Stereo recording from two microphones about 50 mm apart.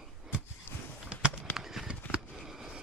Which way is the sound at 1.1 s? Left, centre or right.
Centre.